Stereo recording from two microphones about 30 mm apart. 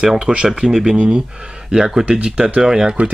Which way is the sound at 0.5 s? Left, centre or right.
Centre.